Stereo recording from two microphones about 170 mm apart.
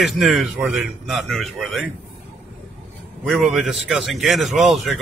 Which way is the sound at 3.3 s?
Centre (ahead or behind).